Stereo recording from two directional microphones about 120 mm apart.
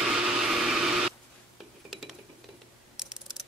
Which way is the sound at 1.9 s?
Centre (ahead or behind).